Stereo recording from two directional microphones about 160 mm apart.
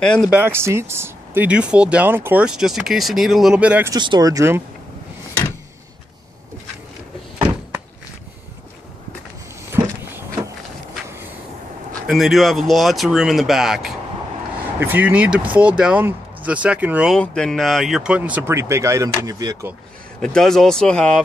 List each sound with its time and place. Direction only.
0.0 s speech: 5° left (ahead or behind)
0.3 s speech: 15° right (ahead or behind)
3.9 s speech: 25° right (ahead or behind)
9.7 s vehicle: 15° right (ahead or behind)
12.1 s speech: centre (ahead or behind)
17.2 s speech: 5° left (ahead or behind); by 19.7 s 20° right (ahead or behind)
20.2 s speech: 5° left (ahead or behind)